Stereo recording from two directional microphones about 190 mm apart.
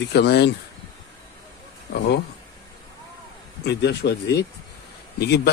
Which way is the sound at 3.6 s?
60° left (ahead or behind).